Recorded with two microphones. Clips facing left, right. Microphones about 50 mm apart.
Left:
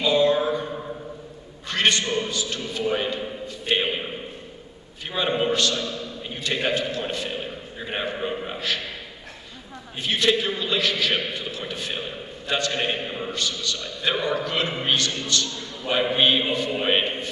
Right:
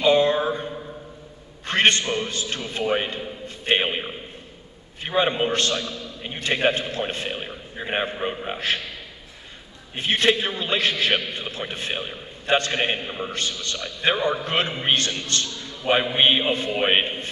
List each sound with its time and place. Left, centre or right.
0.0 s mantra: right
1.7 s a man's voice: right
3.4 s a sound: right
5.0 s a man's voice: right
9.9 s a man's voice: right
13.0 s a man's voice: centre
13.4 s a man's voice: right